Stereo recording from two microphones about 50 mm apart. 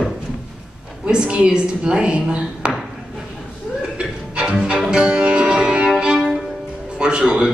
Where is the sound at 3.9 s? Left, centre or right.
Right.